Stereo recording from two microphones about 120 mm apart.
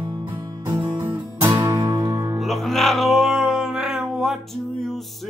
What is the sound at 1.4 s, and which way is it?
Music, 30° right (ahead or behind).